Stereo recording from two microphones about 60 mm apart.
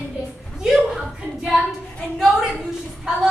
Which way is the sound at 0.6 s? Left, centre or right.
Centre.